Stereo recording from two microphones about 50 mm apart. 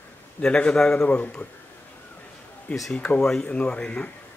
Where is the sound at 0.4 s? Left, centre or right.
Left.